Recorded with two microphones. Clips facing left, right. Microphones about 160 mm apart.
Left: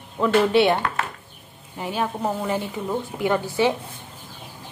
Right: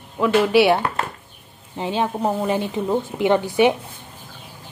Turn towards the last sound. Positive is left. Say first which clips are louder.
# right 4 dB
turn(degrees=-20)  # may be behind; listen again after turning